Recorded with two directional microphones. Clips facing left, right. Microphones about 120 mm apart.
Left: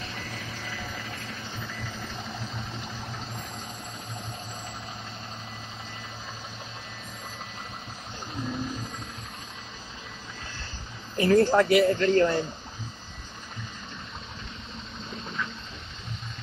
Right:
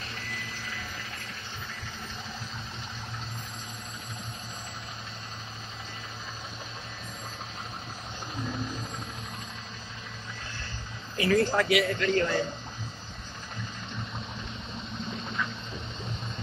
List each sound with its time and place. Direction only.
11.1 s speech: 25° left (ahead or behind)